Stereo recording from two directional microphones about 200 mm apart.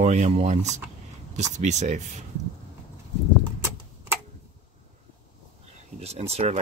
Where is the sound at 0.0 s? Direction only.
35° right (ahead or behind).